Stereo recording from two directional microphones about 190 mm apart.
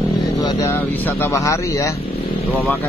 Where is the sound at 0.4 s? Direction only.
20° left (ahead or behind).